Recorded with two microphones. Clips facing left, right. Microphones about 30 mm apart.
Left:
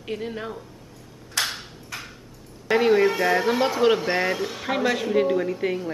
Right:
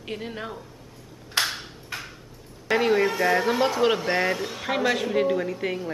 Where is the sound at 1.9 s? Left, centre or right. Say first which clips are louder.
Right 1 dB; right.